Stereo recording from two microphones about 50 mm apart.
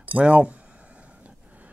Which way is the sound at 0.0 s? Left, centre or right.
Right.